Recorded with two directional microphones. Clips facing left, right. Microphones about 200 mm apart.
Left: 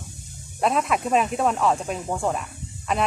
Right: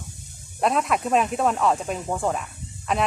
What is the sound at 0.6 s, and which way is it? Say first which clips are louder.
Speech: even; centre (ahead or behind).